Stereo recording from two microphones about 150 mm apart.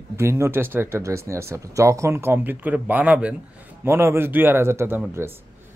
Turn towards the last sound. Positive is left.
turn(degrees=-15)  # may be behind; listen again after turning